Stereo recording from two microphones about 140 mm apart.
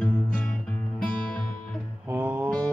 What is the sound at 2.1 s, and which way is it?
Music, 15° right (ahead or behind).